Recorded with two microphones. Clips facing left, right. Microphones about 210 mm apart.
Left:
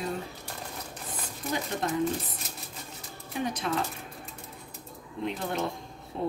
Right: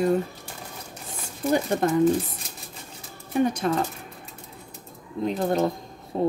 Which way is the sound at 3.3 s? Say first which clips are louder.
Right 8 dB; 45° right (ahead or behind).